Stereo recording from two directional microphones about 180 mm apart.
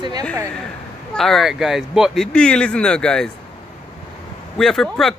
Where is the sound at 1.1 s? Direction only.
Centre (ahead or behind).